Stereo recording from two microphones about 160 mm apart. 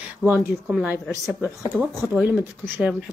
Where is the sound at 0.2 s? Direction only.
10° right (ahead or behind).